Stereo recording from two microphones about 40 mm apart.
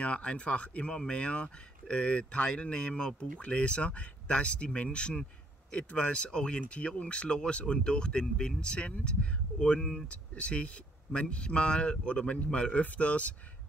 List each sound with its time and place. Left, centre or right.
0.0 s speech: left
10.0 s speech: left